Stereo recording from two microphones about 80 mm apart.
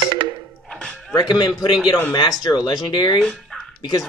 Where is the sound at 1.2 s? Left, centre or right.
Left.